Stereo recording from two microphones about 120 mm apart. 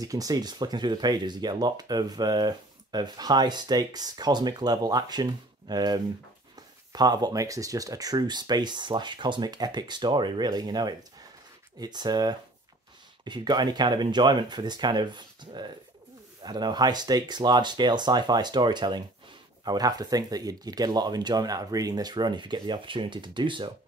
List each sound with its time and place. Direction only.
0.0 s speech: 30° right (ahead or behind)